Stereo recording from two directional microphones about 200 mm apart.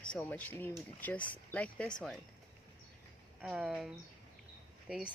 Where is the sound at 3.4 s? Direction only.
5° right (ahead or behind).